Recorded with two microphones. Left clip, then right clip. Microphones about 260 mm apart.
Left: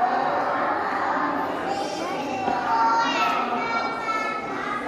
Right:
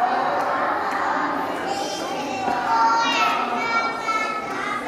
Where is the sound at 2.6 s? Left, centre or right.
Centre.